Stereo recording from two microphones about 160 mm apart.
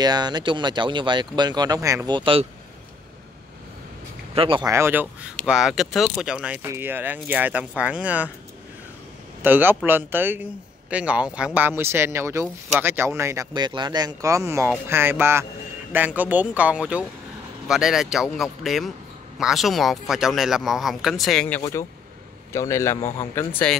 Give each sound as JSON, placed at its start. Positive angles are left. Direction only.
{"t": 0.0, "sound": "speech", "side_deg": -25}
{"t": 2.1, "sound": "speech", "side_deg": -35}
{"t": 4.4, "sound": "speech", "side_deg": -35}
{"t": 4.6, "sound": "speech", "side_deg": -15}
{"t": 5.5, "sound": "a man's voice", "side_deg": 0}
{"t": 9.4, "sound": "speech", "side_deg": -10}
{"t": 13.5, "sound": "a man's voice", "side_deg": -30}
{"t": 21.5, "sound": "a man's voice", "side_deg": 15}